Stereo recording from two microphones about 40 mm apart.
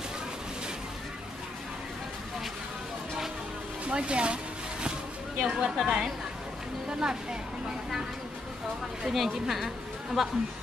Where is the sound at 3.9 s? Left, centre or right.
Right.